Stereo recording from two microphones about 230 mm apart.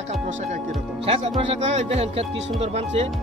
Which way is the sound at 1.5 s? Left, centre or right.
Right.